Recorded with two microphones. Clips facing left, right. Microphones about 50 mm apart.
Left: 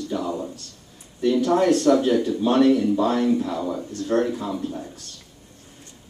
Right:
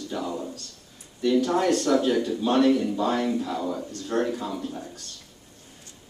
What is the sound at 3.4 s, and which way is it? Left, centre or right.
Speech, centre.